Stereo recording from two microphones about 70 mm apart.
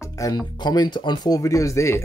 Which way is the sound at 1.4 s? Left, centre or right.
Left.